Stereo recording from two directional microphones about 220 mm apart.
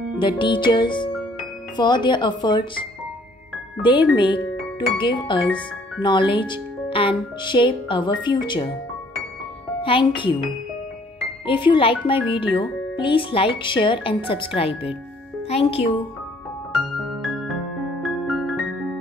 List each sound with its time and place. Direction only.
0.2 s speech: 20° left (ahead or behind)
9.8 s a woman's voice: 25° left (ahead or behind)
11.4 s speech: 20° left (ahead or behind)
16.7 s music: centre (ahead or behind)